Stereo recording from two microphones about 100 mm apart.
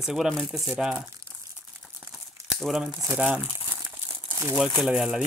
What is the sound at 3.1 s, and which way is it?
Speech, 15° right (ahead or behind).